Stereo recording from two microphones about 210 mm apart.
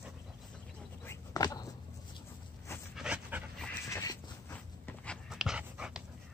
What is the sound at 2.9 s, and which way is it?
Dog, 5° right (ahead or behind).